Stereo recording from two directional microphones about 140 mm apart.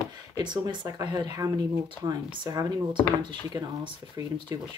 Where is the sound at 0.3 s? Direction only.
30° right (ahead or behind).